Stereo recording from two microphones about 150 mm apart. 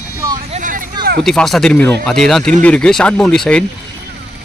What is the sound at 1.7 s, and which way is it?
Speech, 15° left (ahead or behind).